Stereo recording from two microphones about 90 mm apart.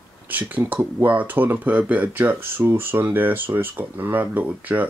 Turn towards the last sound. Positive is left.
turn(degrees=-20)  # may be behind; listen again after turning